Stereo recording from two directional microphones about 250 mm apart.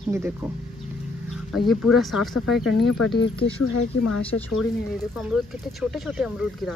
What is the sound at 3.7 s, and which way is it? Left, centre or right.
Speech, left.